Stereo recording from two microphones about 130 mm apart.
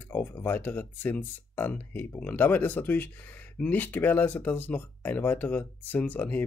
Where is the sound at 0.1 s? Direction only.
15° left (ahead or behind).